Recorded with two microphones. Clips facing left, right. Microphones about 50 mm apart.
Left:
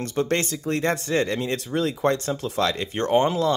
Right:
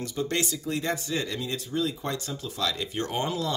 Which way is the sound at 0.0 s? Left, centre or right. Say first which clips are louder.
Left 5 dB; left.